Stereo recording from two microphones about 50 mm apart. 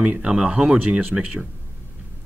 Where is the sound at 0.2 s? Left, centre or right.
Centre.